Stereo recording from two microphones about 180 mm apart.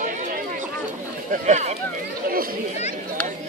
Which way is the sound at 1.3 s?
40° right (ahead or behind).